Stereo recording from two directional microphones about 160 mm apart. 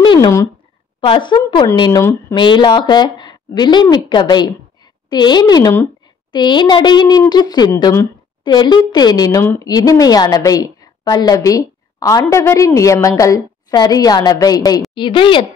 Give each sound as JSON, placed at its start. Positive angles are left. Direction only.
{"t": 0.0, "sound": "a sound", "side_deg": 30}
{"t": 1.0, "sound": "a woman's voice", "side_deg": 30}
{"t": 2.3, "sound": "a woman's voice", "side_deg": 30}